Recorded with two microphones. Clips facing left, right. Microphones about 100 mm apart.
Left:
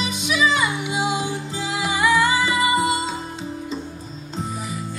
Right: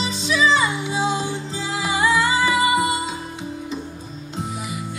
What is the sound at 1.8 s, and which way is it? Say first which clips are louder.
Music: even; 25° right (ahead or behind).